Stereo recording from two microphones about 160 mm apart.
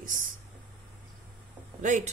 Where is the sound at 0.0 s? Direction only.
60° right (ahead or behind).